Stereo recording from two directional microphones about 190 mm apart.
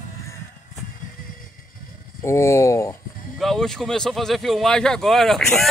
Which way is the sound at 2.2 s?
15° left (ahead or behind).